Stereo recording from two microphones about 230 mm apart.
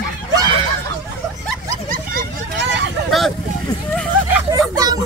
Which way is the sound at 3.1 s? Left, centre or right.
Centre.